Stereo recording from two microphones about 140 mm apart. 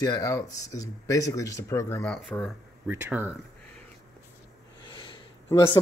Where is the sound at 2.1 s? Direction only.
5° left (ahead or behind).